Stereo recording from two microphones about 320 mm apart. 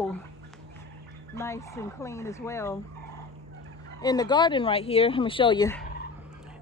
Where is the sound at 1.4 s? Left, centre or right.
Centre.